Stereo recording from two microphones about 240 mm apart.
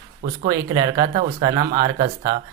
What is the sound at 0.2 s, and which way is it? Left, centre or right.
Speech, right.